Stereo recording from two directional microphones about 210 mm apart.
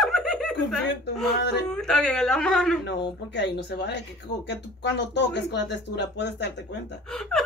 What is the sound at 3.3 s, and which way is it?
Speech, 55° left (ahead or behind).